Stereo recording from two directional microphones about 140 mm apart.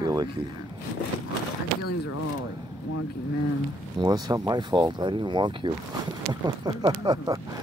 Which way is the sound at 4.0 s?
30° right (ahead or behind).